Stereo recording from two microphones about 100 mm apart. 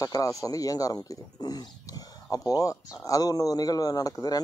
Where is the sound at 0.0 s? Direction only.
35° left (ahead or behind).